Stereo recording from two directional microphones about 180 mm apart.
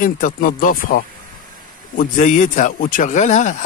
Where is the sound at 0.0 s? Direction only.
50° left (ahead or behind).